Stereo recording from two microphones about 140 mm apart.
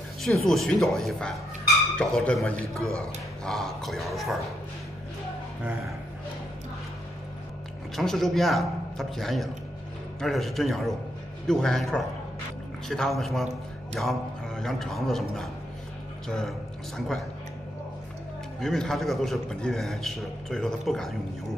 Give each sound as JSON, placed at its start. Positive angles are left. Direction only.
{"t": 0.2, "sound": "a man's voice", "side_deg": 0}
{"t": 2.8, "sound": "speech", "side_deg": -20}
{"t": 3.4, "sound": "a man's voice", "side_deg": 0}
{"t": 7.9, "sound": "a man's voice", "side_deg": 0}
{"t": 18.6, "sound": "a man's voice", "side_deg": 5}